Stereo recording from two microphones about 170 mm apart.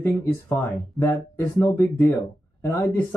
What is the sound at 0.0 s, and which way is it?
Speech, 15° left (ahead or behind).